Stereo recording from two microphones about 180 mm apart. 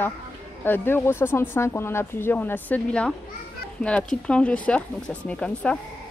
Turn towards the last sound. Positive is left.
turn(degrees=5)  # may be behind; listen again after turning